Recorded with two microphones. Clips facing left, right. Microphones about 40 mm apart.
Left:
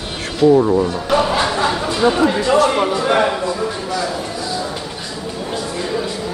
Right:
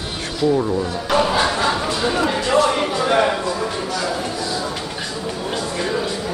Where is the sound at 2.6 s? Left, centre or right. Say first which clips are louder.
Left 2 dB; centre.